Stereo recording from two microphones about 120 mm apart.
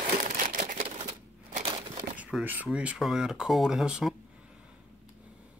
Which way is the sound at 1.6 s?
45° right (ahead or behind).